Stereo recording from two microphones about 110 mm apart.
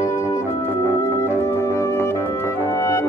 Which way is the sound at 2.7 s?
25° left (ahead or behind).